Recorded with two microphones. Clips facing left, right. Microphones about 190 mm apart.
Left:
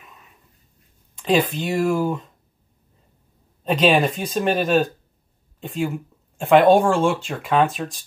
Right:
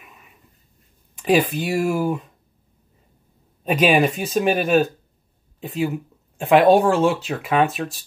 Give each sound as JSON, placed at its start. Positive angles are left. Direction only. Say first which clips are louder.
{"t": 1.1, "sound": "speech", "louder": "right 1 dB", "side_deg": -10}
{"t": 3.6, "sound": "speech", "louder": "even", "side_deg": -10}